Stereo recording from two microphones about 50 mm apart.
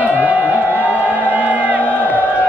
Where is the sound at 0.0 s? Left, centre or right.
Right.